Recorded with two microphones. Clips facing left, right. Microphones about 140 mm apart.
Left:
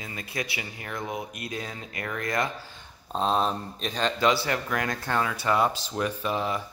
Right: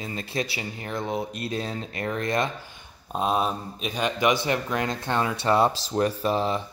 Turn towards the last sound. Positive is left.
turn(degrees=-30)  # may be behind; listen again after turning